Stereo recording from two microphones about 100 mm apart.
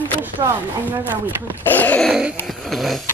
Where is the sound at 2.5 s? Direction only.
Centre (ahead or behind).